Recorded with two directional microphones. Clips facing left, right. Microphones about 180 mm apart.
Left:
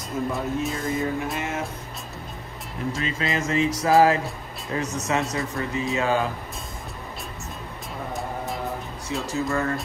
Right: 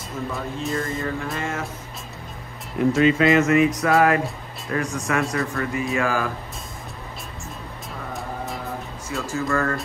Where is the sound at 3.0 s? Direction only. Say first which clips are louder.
Right 10 dB; 30° left (ahead or behind).